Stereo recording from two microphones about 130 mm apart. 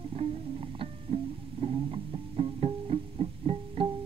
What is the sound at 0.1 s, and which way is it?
Music, 50° right (ahead or behind).